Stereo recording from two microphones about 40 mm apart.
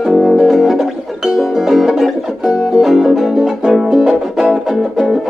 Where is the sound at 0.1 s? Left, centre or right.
Centre.